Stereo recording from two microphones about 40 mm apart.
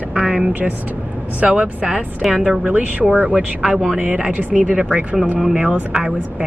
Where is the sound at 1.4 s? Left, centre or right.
Right.